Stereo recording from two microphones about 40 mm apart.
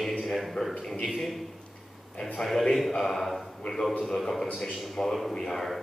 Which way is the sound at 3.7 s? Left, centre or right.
Centre.